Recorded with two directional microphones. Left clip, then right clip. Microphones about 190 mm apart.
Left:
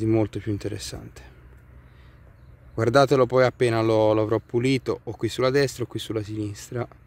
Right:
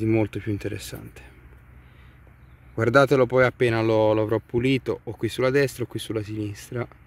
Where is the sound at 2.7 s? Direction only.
Centre (ahead or behind).